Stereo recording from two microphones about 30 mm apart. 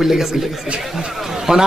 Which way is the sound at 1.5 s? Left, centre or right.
Right.